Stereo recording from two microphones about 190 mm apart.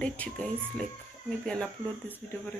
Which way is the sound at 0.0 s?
5° left (ahead or behind).